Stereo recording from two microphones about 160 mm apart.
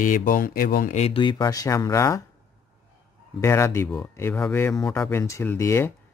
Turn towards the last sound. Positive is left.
turn(degrees=15)  # may be behind; listen again after turning